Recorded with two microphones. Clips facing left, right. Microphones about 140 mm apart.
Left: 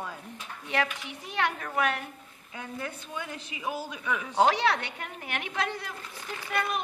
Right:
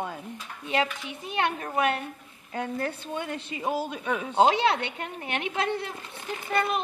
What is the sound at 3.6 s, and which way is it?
A woman's voice, 25° right (ahead or behind).